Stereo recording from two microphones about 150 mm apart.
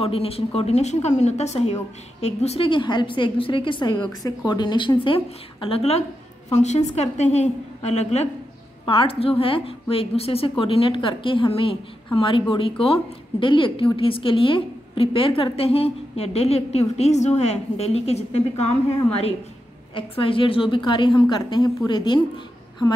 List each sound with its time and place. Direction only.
0.0 s a woman's voice: 40° left (ahead or behind)
8.8 s a woman's voice: 35° left (ahead or behind)
19.9 s a woman's voice: 35° left (ahead or behind)